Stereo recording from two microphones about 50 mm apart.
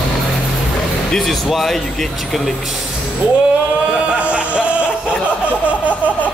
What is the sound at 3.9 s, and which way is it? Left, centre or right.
Music, right.